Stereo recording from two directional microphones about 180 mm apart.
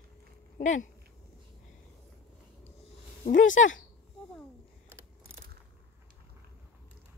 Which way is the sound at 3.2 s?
45° left (ahead or behind).